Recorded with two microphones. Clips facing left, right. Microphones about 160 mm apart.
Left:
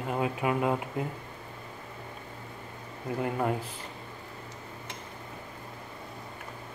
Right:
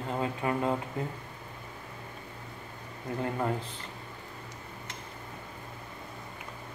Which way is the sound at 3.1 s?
15° left (ahead or behind).